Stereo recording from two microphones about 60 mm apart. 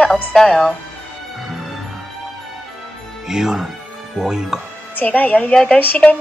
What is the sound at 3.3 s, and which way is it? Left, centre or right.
Speech, centre.